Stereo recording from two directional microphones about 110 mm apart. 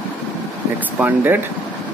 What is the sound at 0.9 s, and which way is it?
Speech, 15° right (ahead or behind).